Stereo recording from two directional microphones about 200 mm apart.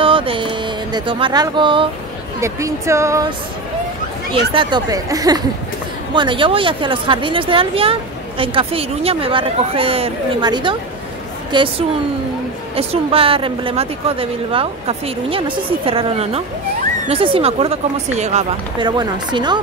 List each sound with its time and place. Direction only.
0.0 s music: 25° right (ahead or behind)
2.4 s speech: 15° right (ahead or behind)
4.6 s speech: 25° right (ahead or behind)
12.7 s speech: 30° right (ahead or behind)
18.8 s speech: 20° right (ahead or behind)